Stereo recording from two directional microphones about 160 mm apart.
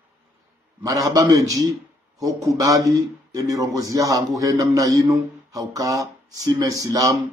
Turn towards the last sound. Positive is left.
turn(degrees=-20)  # may be behind; listen again after turning